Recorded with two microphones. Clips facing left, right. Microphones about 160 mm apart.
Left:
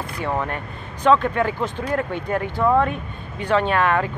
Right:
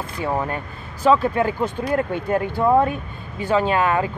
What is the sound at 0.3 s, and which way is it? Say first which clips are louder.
Speech: right 1 dB; 10° right (ahead or behind).